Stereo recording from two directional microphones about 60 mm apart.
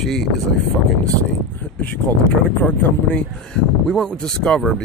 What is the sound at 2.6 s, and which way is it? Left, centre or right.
Speech, centre.